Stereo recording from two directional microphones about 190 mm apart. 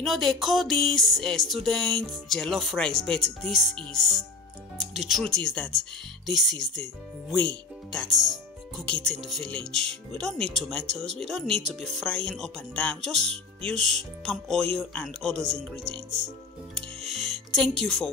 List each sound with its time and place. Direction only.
0.0 s speech: centre (ahead or behind)
16.7 s music: centre (ahead or behind)